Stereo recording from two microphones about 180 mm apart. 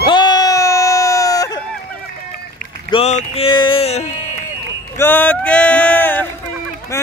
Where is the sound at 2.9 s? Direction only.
35° left (ahead or behind).